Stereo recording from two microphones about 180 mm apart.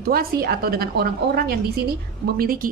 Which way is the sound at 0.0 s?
55° right (ahead or behind).